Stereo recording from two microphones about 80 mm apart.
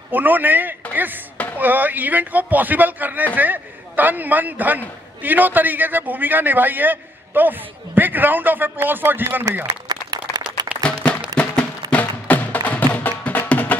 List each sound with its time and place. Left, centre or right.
0.1 s a man's voice: right
9.4 s speech: right
9.7 s applause: right
10.8 s music: centre